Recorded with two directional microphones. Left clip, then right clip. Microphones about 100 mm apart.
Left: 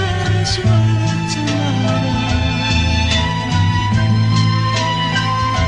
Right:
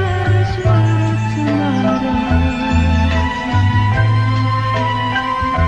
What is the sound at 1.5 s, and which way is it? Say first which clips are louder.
Music: right 5 dB; 35° right (ahead or behind).